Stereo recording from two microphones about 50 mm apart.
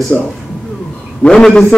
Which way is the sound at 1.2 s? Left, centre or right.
Centre.